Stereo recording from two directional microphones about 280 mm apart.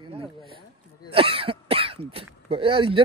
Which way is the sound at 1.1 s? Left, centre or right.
Centre.